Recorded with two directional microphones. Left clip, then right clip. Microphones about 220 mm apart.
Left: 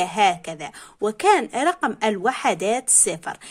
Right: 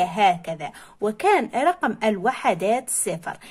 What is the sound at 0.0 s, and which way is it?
Speech, 20° left (ahead or behind).